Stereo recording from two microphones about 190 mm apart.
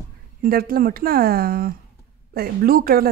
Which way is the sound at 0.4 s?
50° right (ahead or behind).